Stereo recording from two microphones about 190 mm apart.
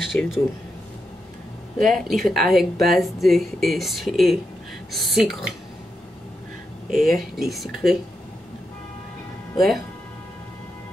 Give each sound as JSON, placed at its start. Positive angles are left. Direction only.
{"t": 0.0, "sound": "speech", "side_deg": 0}
{"t": 1.8, "sound": "speech", "side_deg": 0}
{"t": 6.9, "sound": "speech", "side_deg": 0}